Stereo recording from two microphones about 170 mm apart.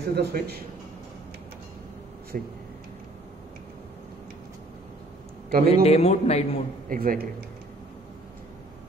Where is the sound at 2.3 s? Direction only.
55° right (ahead or behind).